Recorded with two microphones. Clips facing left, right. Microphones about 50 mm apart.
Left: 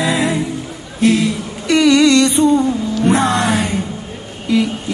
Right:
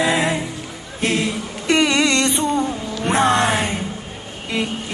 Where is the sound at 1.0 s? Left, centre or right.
Right.